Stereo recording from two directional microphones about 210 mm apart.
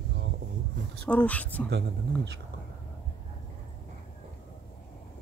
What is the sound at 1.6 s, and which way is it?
Speech, 55° right (ahead or behind).